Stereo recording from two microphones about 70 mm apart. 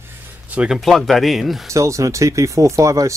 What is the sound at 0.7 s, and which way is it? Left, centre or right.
Speech, centre.